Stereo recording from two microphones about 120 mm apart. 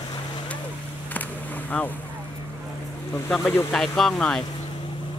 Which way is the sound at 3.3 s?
5° left (ahead or behind).